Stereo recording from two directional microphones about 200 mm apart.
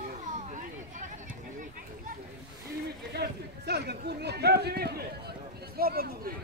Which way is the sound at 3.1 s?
55° right (ahead or behind).